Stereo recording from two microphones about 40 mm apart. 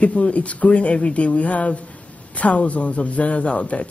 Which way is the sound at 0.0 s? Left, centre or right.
Left.